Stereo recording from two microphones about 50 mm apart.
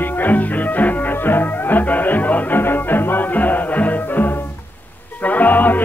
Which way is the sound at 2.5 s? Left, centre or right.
Left.